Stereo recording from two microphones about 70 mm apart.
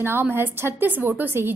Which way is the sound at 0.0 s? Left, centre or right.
Right.